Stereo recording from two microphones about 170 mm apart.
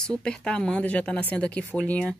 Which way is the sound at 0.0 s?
5° left (ahead or behind).